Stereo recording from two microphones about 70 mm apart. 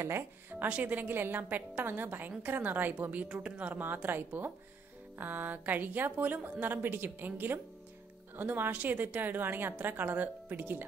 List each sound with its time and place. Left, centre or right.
0.0 s a woman's voice: right